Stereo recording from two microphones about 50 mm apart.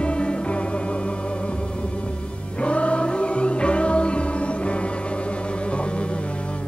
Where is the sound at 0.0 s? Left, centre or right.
Left.